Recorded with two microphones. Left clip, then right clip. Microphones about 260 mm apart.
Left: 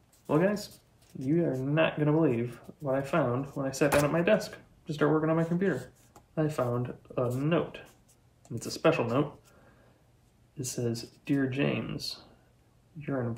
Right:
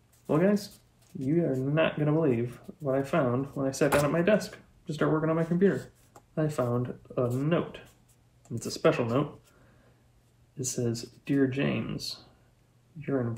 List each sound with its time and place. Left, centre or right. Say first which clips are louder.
0.3 s speech: right 1 dB; centre
10.6 s speech: right 2 dB; centre